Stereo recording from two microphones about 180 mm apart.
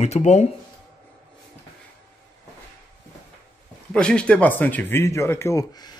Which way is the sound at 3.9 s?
5° left (ahead or behind).